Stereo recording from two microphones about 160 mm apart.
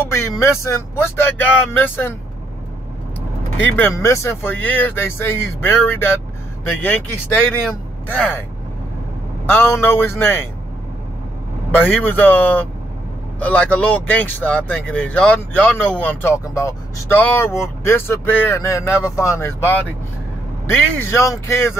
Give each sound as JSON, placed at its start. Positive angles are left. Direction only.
{"t": 0.0, "sound": "speech", "side_deg": 15}
{"t": 3.7, "sound": "speech", "side_deg": 15}
{"t": 7.7, "sound": "a man's voice", "side_deg": 10}
{"t": 9.5, "sound": "speech", "side_deg": 15}
{"t": 11.7, "sound": "speech", "side_deg": 10}